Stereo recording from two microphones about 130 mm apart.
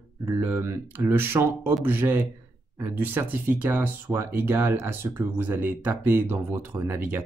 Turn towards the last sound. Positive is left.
turn(degrees=-15)  # may be behind; listen again after turning